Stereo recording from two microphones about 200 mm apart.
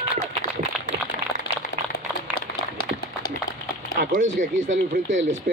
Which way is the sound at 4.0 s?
40° right (ahead or behind).